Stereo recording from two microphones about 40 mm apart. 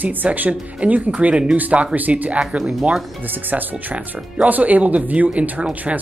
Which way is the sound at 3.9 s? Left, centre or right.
Right.